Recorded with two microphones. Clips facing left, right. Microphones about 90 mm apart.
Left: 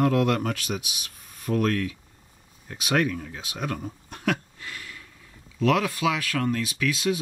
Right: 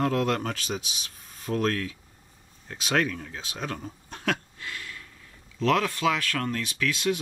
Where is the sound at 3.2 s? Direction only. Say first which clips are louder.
Left 2 dB; 10° left (ahead or behind).